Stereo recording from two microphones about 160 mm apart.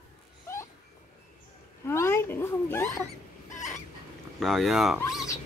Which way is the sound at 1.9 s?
15° left (ahead or behind).